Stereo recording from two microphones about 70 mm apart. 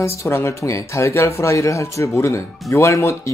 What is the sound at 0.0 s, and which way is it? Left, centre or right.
Speech, left.